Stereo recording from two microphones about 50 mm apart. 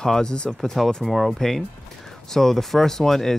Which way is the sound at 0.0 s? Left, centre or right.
Centre.